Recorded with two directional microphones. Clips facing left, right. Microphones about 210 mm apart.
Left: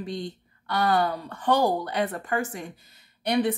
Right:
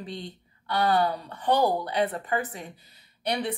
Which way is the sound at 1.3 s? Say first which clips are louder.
Left 2 dB; 45° left (ahead or behind).